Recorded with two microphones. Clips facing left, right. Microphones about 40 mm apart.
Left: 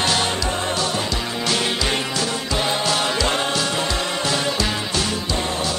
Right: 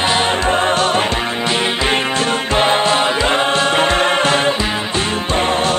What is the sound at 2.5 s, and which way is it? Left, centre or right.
Music, right.